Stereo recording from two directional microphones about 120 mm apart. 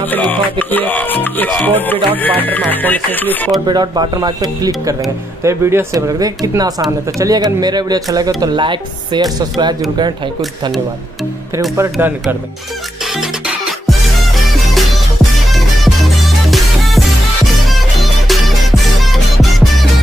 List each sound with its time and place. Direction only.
0.1 s music: 15° left (ahead or behind)
3.6 s speech: 35° right (ahead or behind)
11.7 s speech: 20° right (ahead or behind)
13.0 s music: 5° right (ahead or behind)
15.5 s music: centre (ahead or behind)